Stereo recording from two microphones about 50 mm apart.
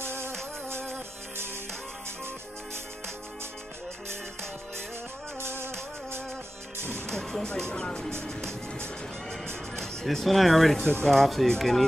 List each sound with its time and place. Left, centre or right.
0.0 s music: right
4.1 s music: right
7.1 s speech: centre
9.8 s speech: centre